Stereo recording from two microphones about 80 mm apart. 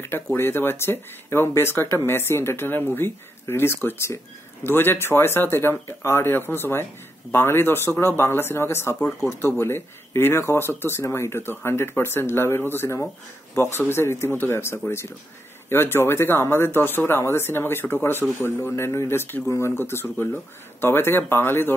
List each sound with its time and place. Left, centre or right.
0.0 s speech: left